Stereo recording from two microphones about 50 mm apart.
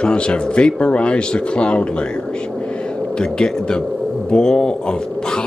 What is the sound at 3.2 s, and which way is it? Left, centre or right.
Speech, centre.